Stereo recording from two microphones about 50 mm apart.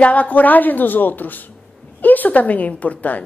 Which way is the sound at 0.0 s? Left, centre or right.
Left.